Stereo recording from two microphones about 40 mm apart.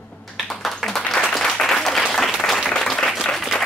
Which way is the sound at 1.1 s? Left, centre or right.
Centre.